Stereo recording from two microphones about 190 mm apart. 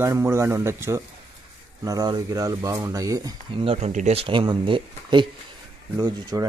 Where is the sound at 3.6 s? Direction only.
35° right (ahead or behind).